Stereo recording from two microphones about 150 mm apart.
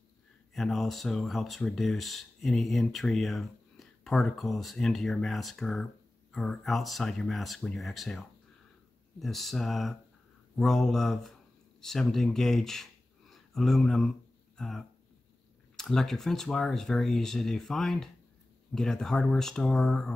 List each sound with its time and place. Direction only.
0.6 s speech: centre (ahead or behind)